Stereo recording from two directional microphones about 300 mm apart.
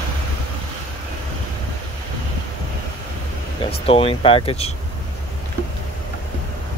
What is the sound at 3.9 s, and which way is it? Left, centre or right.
Speech, centre.